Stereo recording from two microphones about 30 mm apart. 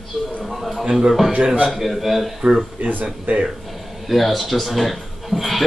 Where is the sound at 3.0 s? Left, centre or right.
Right.